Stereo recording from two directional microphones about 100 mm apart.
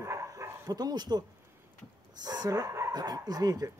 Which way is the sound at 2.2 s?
40° right (ahead or behind).